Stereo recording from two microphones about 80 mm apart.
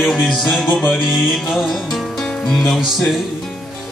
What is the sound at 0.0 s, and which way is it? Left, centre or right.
Music, centre.